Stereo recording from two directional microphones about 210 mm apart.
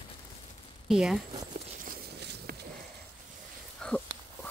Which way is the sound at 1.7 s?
45° right (ahead or behind).